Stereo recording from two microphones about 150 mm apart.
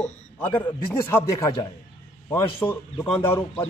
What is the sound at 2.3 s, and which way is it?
Speech, 15° left (ahead or behind).